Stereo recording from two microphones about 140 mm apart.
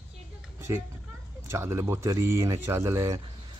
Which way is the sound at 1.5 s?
20° right (ahead or behind).